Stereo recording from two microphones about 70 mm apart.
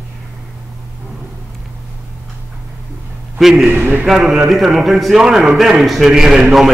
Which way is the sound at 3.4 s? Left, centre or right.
Centre.